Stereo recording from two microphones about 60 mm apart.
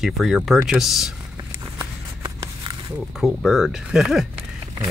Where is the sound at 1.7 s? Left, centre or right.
Right.